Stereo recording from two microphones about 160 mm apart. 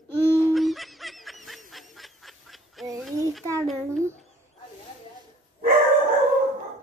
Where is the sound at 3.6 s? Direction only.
Centre (ahead or behind).